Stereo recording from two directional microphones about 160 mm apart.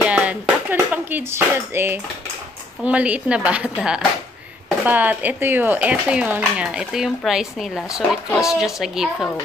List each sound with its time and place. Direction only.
0.0 s music: 10° right (ahead or behind)
2.8 s speech: 10° right (ahead or behind)